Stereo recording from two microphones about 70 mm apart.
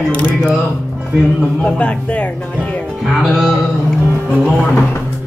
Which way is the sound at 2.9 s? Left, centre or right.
Centre.